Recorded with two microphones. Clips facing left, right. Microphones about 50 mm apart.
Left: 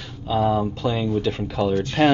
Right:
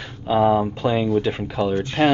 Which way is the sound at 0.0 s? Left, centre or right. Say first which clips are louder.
Right 4 dB; right.